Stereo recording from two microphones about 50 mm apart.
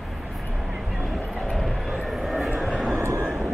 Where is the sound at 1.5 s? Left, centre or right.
Centre.